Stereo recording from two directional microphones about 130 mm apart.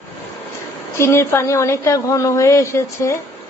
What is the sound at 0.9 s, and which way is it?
A woman's voice, 20° left (ahead or behind).